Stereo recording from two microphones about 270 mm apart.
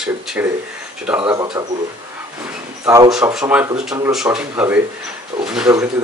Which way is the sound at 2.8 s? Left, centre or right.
Centre.